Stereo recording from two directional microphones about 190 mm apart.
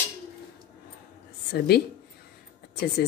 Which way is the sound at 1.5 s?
55° left (ahead or behind).